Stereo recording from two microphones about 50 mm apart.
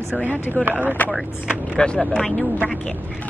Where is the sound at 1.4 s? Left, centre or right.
Centre.